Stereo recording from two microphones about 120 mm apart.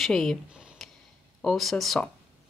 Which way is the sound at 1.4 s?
Centre (ahead or behind).